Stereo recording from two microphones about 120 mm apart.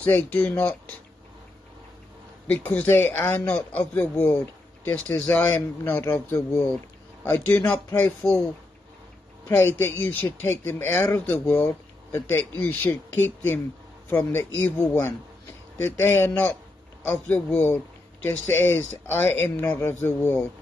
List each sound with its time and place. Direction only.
0.0 s speech: 15° left (ahead or behind)
2.4 s speech: 10° left (ahead or behind)
9.7 s speech: 15° left (ahead or behind)